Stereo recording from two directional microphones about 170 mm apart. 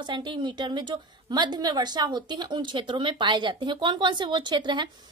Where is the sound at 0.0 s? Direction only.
25° right (ahead or behind).